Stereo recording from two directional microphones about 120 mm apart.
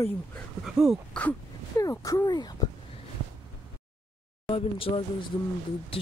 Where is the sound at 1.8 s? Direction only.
25° left (ahead or behind).